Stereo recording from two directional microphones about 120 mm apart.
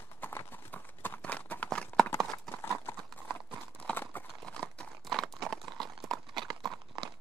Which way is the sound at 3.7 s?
15° left (ahead or behind).